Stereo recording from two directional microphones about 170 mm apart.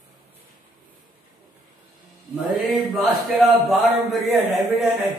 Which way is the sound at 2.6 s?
Centre (ahead or behind).